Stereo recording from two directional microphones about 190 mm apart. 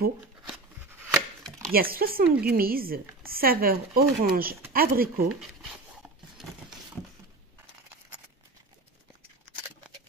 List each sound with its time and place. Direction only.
0.5 s chopping: centre (ahead or behind)
1.7 s speech: 50° right (ahead or behind)
5.4 s a sound: centre (ahead or behind)